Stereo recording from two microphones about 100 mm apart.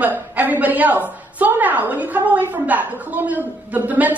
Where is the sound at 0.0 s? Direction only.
15° right (ahead or behind).